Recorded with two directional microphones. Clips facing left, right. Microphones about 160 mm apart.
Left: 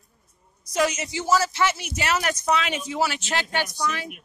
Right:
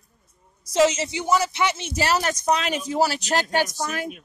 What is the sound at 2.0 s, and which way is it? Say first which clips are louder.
Speech: right 3 dB; 35° right (ahead or behind).